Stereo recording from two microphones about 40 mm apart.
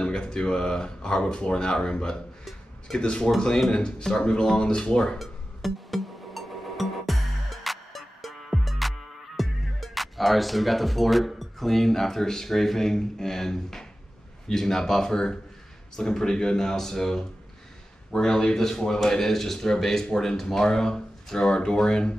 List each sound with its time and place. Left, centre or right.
0.0 s speech: left
5.2 s music: centre
9.4 s speech: centre; by 22.1 s left